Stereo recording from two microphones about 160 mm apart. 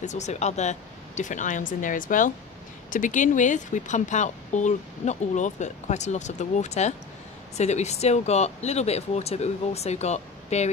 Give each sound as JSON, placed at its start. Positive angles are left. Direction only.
{"t": 0.0, "sound": "a woman's voice", "side_deg": 45}